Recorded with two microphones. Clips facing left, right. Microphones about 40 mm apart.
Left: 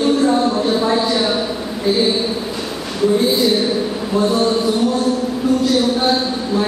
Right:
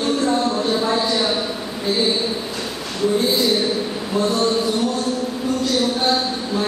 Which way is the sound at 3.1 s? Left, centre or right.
Centre.